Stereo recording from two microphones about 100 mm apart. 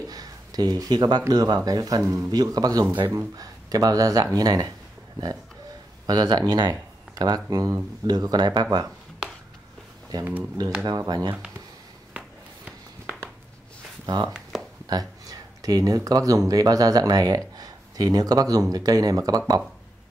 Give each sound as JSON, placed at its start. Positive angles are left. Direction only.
{"t": 0.1, "sound": "speech", "side_deg": -40}
{"t": 2.9, "sound": "speech", "side_deg": -20}
{"t": 3.3, "sound": "speech", "side_deg": -40}
{"t": 6.0, "sound": "speech", "side_deg": -40}
{"t": 10.9, "sound": "speech", "side_deg": -40}
{"t": 12.6, "sound": "a sound", "side_deg": -15}
{"t": 14.0, "sound": "speech", "side_deg": -45}
{"t": 14.5, "sound": "a sound", "side_deg": -5}
{"t": 14.9, "sound": "speech", "side_deg": -40}